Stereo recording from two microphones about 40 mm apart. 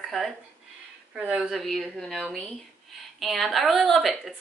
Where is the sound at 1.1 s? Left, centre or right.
Right.